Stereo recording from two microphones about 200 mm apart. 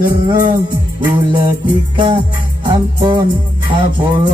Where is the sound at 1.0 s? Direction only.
15° right (ahead or behind).